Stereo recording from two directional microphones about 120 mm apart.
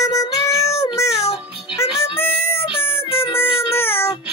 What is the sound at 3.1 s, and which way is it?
Music, 50° left (ahead or behind).